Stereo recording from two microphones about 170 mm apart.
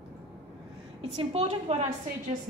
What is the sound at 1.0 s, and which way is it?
Speech, 35° right (ahead or behind).